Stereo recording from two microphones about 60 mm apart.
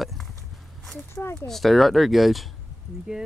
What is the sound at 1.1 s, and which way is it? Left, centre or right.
Speech, left.